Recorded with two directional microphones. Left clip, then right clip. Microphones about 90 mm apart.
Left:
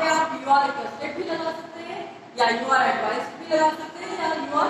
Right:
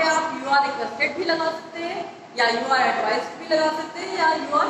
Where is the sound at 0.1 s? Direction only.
35° left (ahead or behind).